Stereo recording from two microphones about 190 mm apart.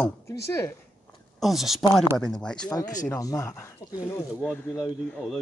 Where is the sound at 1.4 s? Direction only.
Centre (ahead or behind).